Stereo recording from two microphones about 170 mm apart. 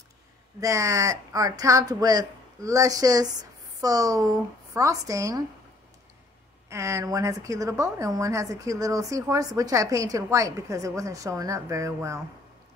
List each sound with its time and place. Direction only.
0.6 s a woman's voice: 20° right (ahead or behind)
6.7 s a woman's voice: 15° right (ahead or behind)